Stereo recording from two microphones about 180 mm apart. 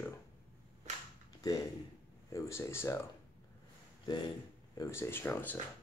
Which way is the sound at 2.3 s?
15° left (ahead or behind).